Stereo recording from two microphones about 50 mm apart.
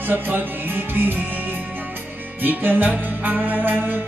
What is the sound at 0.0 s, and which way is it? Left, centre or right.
Music, right.